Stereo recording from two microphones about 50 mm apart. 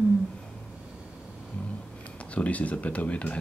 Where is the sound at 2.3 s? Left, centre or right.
Left.